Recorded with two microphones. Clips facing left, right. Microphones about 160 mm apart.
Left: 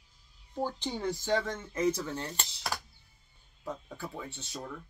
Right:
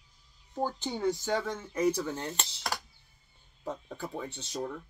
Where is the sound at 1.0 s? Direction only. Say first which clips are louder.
Right 1 dB; 5° right (ahead or behind).